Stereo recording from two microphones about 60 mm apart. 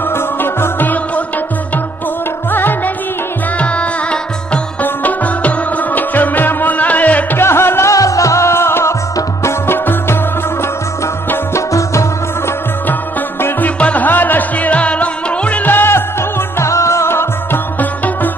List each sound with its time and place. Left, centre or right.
0.1 s music: left
2.5 s music: left
3.5 s music: left
7.3 s music: left
7.9 s music: left
11.5 s music: left
13.7 s music: left
15.7 s music: left
16.5 s music: left
17.7 s music: left